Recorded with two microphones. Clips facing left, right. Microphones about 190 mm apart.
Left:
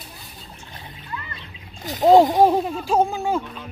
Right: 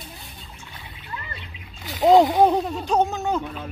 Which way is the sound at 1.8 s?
45° left (ahead or behind).